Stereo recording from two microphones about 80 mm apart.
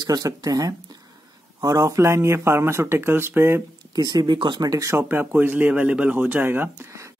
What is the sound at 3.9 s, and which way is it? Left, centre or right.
Speech, right.